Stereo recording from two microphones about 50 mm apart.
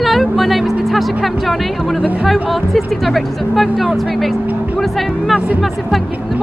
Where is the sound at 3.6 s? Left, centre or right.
Centre.